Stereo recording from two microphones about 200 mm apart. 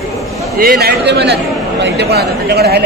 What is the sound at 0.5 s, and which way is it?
A man's voice, 50° right (ahead or behind).